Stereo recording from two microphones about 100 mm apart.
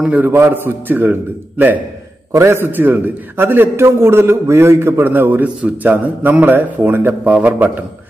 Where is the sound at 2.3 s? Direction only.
25° right (ahead or behind).